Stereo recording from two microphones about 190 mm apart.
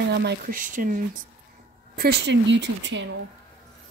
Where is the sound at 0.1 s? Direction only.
60° right (ahead or behind); by 1.2 s 45° right (ahead or behind).